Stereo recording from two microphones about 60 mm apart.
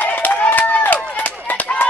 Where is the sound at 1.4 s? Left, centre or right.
Left.